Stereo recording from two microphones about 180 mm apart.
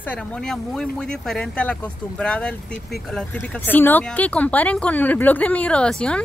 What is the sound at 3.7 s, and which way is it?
Speech, 10° left (ahead or behind).